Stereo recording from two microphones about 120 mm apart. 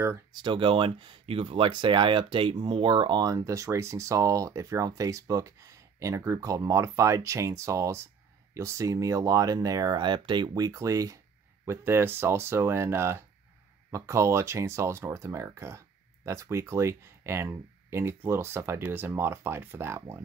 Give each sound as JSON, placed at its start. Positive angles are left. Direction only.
{"t": 0.3, "sound": "speech", "side_deg": -40}